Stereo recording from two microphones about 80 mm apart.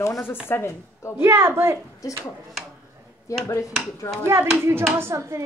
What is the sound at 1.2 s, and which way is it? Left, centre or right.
Speech, right.